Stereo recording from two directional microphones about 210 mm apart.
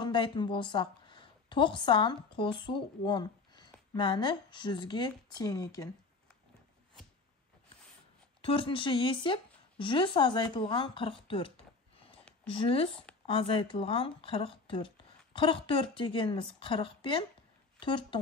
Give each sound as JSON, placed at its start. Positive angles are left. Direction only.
{"t": 0.0, "sound": "a woman's voice", "side_deg": 20}
{"t": 8.4, "sound": "a woman's voice", "side_deg": 25}